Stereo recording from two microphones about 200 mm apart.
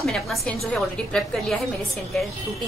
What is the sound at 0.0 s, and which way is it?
A woman's voice, centre (ahead or behind).